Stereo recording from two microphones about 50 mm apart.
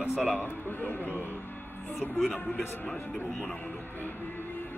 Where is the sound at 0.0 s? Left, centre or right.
Centre.